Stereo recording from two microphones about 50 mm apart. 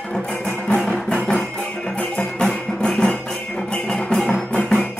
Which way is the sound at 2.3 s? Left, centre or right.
Centre.